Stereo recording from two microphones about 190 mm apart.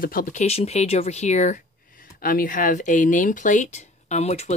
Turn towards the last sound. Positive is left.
turn(degrees=35)  # may be behind; listen again after turning